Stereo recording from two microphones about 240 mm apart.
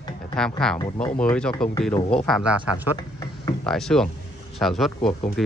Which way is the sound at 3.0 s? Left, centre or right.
Centre.